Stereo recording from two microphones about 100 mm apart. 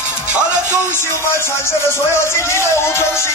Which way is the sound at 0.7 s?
25° left (ahead or behind).